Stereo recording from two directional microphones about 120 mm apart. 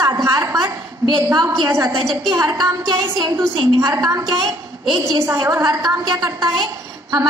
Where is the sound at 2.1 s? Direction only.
25° right (ahead or behind).